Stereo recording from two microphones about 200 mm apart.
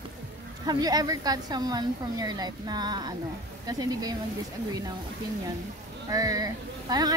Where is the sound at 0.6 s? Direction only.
20° right (ahead or behind).